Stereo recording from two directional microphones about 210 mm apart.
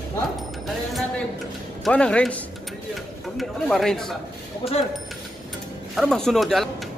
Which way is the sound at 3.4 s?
Centre (ahead or behind).